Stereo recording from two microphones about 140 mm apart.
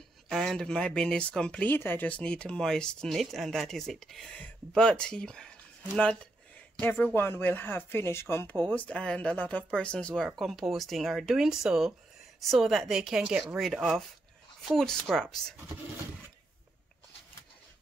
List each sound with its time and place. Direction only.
0.3 s speech: centre (ahead or behind)
6.8 s speech: 10° left (ahead or behind)